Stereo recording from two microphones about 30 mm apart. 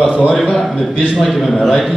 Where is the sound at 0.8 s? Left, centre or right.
Centre.